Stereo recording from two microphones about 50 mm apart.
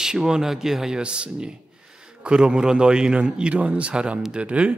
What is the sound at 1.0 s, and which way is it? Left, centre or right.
A man's voice, right.